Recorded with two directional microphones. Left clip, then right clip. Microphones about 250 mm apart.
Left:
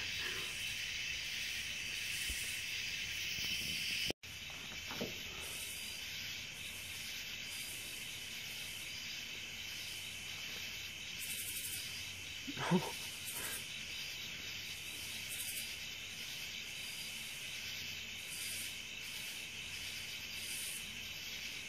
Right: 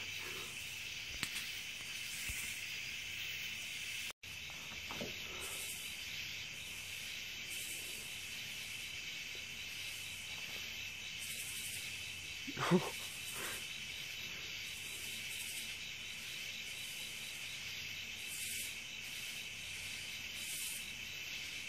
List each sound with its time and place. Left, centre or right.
12.5 s dog: right